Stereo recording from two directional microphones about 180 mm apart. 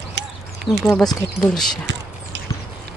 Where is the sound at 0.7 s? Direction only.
25° left (ahead or behind).